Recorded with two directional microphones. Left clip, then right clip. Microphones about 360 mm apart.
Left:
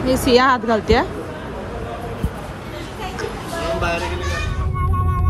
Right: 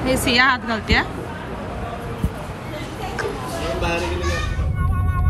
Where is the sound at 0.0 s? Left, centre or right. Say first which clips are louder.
Left 2 dB; centre.